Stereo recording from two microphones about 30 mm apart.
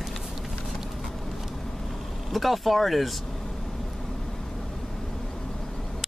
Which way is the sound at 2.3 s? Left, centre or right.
Centre.